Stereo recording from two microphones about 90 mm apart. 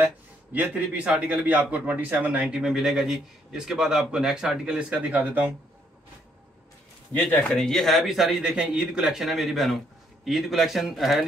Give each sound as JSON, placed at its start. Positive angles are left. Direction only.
{"t": 0.0, "sound": "speech", "side_deg": -20}
{"t": 2.4, "sound": "speech", "side_deg": -5}
{"t": 7.5, "sound": "speech", "side_deg": 5}